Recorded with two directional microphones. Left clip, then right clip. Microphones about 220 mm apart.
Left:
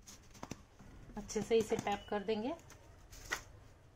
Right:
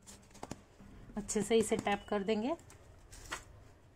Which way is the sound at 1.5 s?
45° right (ahead or behind).